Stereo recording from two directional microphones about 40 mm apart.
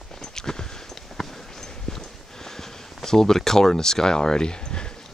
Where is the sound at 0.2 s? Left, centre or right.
Centre.